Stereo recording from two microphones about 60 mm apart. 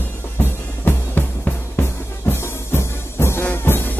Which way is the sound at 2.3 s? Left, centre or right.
Left.